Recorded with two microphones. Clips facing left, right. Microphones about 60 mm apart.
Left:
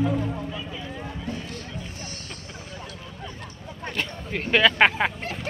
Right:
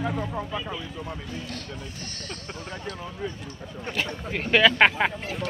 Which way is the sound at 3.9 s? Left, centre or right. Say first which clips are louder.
Right 1 dB; centre.